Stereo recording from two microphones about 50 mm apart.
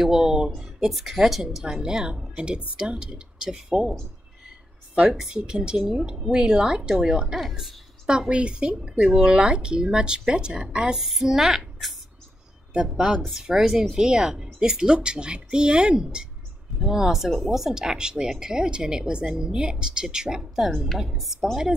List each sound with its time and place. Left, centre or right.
0.0 s speech: centre
5.3 s speech: centre
7.3 s speech: centre
8.3 s speech: right
11.0 s speech: centre